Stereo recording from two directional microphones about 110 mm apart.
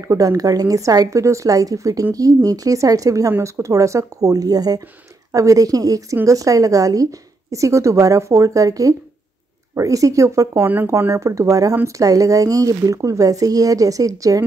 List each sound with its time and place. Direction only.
0.0 s speech: 30° right (ahead or behind)
10.5 s speech: 15° right (ahead or behind)